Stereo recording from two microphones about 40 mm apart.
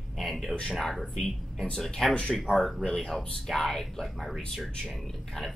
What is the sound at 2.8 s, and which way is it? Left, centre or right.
Speech, centre.